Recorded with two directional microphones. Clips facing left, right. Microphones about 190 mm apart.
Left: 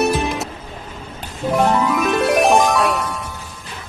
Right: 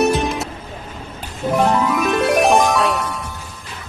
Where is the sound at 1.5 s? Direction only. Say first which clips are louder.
Even; centre (ahead or behind).